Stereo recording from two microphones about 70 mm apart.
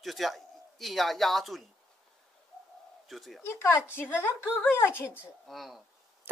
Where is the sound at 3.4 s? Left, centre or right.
Left.